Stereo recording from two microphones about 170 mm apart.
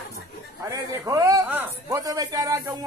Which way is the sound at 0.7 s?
20° right (ahead or behind).